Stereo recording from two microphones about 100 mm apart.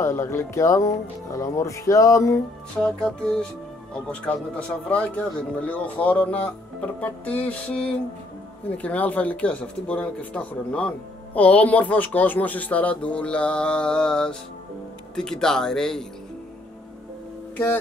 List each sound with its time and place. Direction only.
0.0 s speech: 30° left (ahead or behind)
2.8 s speech: 10° left (ahead or behind)